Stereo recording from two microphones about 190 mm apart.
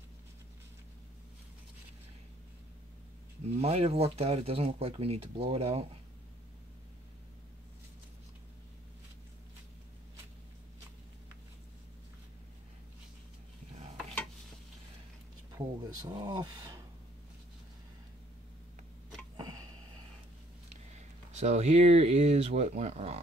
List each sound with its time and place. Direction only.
3.5 s speech: 35° right (ahead or behind)
15.5 s speech: 20° right (ahead or behind)
19.3 s a sound: 20° right (ahead or behind)
20.9 s speech: 35° right (ahead or behind)